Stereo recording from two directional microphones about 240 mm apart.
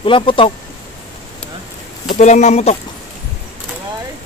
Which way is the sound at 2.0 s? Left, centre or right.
Left.